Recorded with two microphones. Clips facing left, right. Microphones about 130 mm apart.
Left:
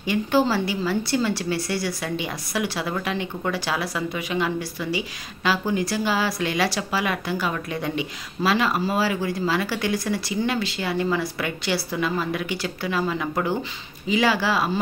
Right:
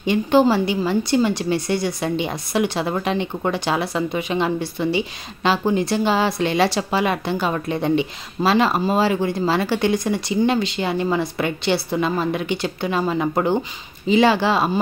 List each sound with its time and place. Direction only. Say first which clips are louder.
0.0 s a woman's voice: right 5 dB; 20° right (ahead or behind)